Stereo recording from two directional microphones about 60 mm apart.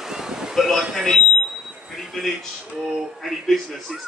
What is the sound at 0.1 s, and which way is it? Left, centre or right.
Wind noise, centre.